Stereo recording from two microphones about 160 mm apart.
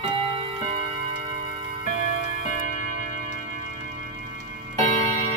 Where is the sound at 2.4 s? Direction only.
55° left (ahead or behind).